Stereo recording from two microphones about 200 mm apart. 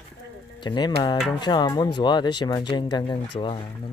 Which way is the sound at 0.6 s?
20° left (ahead or behind).